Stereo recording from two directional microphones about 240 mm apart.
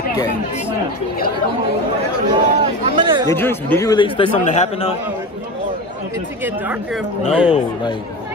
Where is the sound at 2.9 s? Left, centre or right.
Centre.